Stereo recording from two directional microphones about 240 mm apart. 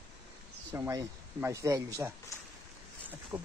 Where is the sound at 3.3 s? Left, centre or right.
Centre.